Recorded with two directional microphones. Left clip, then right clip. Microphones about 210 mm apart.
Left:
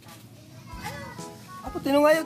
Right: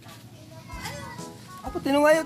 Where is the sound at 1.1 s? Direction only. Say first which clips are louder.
Even; 5° left (ahead or behind).